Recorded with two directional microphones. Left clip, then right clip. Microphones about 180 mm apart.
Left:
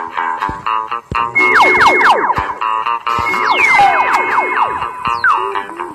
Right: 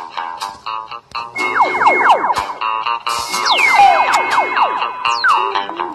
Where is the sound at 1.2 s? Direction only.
50° right (ahead or behind).